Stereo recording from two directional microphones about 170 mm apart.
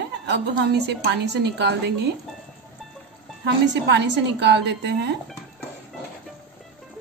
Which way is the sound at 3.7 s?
90° right.